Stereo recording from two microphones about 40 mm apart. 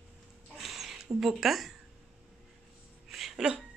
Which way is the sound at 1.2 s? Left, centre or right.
Centre.